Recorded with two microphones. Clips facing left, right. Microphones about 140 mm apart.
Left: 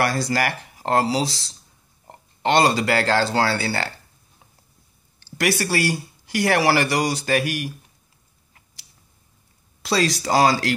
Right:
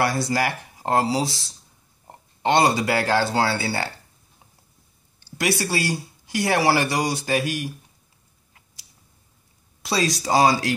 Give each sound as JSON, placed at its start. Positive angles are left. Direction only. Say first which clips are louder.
{"t": 0.0, "sound": "speech", "louder": "even", "side_deg": -20}
{"t": 5.5, "sound": "speech", "louder": "left 2 dB", "side_deg": -15}
{"t": 9.8, "sound": "speech", "louder": "left 2 dB", "side_deg": -15}